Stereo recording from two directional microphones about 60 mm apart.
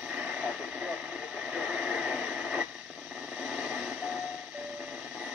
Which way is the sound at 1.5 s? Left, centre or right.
Centre.